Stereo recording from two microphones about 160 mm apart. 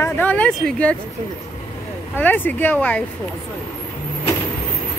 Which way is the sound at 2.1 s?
10° left (ahead or behind).